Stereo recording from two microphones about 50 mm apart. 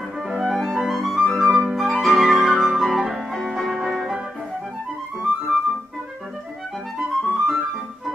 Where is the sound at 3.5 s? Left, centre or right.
Centre.